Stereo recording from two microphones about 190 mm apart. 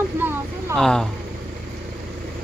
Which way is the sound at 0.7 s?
5° left (ahead or behind).